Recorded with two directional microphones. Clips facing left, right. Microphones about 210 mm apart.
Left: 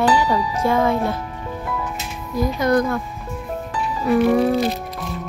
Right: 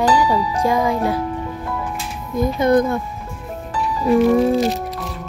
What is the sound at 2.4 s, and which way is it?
Speech, 25° right (ahead or behind).